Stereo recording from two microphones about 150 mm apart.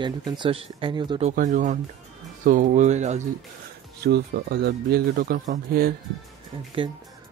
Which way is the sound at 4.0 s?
90° right.